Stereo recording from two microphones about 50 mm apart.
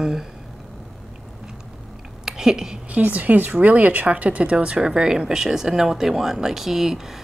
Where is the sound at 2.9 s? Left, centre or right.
Right.